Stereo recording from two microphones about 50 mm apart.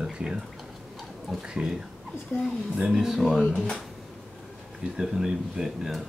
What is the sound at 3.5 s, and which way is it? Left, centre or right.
Speech, centre.